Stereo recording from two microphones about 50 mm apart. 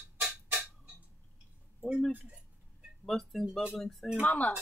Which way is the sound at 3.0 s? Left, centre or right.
Centre.